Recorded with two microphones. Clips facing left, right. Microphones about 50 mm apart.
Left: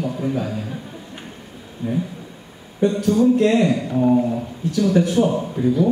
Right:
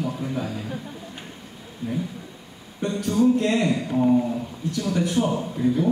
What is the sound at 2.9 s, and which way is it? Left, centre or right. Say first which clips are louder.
Speech: left 2 dB; left.